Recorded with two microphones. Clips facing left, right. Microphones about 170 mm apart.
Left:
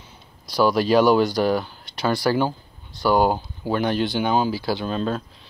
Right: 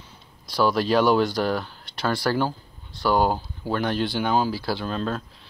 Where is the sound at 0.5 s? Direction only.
Centre (ahead or behind).